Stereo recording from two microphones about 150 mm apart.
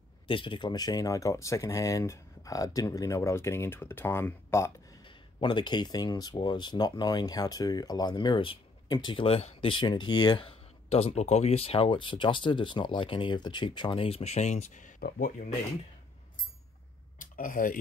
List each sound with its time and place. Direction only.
0.3 s speech: 35° left (ahead or behind); by 4.7 s 15° left (ahead or behind)
5.0 s speech: 30° left (ahead or behind); by 15.3 s 75° left (ahead or behind)
17.2 s speech: 65° left (ahead or behind)